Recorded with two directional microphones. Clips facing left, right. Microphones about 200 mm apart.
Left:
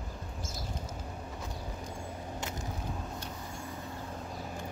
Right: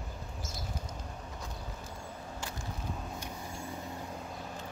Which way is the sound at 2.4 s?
20° left (ahead or behind).